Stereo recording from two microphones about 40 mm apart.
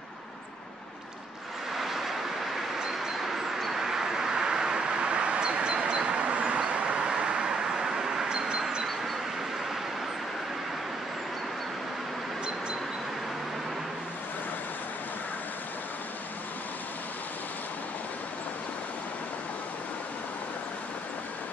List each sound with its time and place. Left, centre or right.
1.8 s vehicle: centre